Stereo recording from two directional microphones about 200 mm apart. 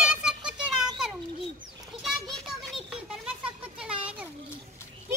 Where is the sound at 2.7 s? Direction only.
5° right (ahead or behind).